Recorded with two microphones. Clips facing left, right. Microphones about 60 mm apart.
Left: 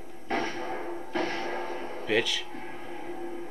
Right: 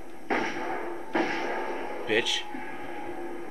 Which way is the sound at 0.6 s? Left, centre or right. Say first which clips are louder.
Right 2 dB; centre.